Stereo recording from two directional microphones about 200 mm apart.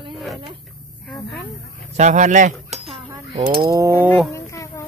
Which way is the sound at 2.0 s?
35° right (ahead or behind).